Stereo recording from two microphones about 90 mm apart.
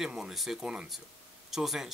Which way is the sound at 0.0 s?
5° right (ahead or behind).